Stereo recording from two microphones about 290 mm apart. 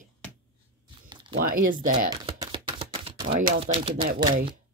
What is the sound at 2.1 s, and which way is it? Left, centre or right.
Typewriter, centre.